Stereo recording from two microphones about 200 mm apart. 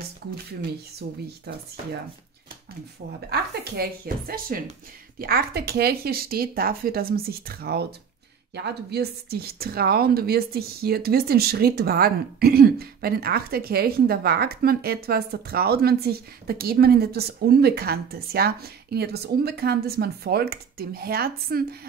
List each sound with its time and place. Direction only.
3.3 s speech: 50° right (ahead or behind)